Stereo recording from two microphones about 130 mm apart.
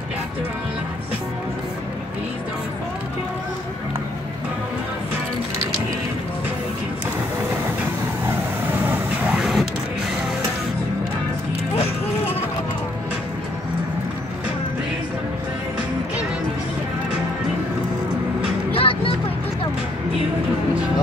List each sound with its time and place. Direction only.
8.3 s vehicle: 15° right (ahead or behind)
9.4 s printer: centre (ahead or behind)
18.7 s music: 45° left (ahead or behind)